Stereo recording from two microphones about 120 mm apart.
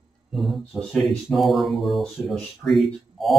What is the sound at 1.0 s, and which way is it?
Speech, centre (ahead or behind).